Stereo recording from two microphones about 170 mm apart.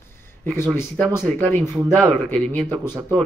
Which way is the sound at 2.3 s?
5° left (ahead or behind).